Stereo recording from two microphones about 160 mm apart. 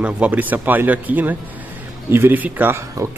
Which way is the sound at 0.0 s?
10° right (ahead or behind).